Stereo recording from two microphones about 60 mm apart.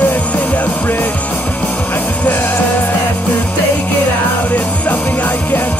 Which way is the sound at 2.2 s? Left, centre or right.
Left.